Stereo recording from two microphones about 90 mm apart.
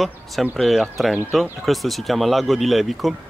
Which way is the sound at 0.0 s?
Centre (ahead or behind).